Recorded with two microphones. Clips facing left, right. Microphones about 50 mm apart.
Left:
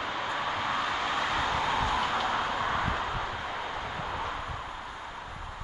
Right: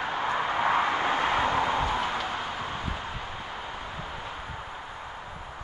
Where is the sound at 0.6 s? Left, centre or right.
Right.